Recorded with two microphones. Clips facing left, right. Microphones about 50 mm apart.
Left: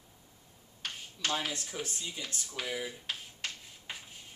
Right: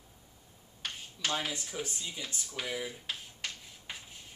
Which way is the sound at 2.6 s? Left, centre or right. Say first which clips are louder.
Even; centre.